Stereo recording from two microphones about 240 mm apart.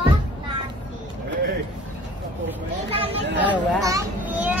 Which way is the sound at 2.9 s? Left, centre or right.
Right.